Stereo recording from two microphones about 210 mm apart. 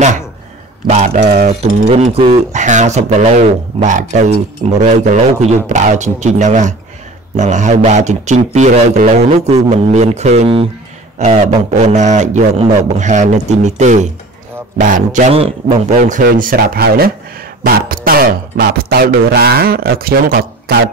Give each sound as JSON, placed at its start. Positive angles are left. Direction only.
{"t": 0.8, "sound": "speech", "side_deg": -35}
{"t": 16.0, "sound": "speech", "side_deg": -40}